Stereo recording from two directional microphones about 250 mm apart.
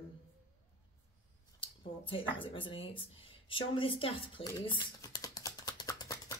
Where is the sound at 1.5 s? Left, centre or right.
Centre.